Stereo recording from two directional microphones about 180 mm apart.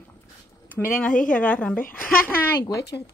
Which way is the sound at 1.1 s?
50° left (ahead or behind).